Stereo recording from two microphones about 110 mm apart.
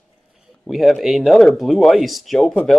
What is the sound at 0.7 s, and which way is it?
Speech, centre (ahead or behind).